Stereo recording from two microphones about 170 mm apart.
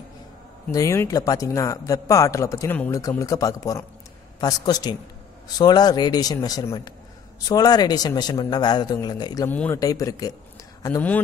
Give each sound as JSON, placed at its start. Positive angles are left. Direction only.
{"t": 0.7, "sound": "a man's voice", "side_deg": 20}
{"t": 9.5, "sound": "speech", "side_deg": 10}
{"t": 9.8, "sound": "a man's voice", "side_deg": 20}